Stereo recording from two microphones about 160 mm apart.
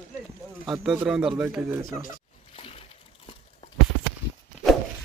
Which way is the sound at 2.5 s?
40° left (ahead or behind).